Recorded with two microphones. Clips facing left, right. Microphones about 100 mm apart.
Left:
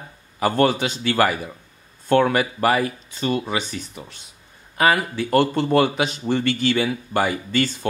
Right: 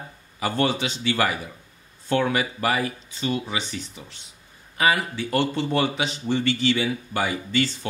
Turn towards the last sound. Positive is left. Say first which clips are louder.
# left 2 dB
turn(degrees=50)  # may be behind; listen again after turning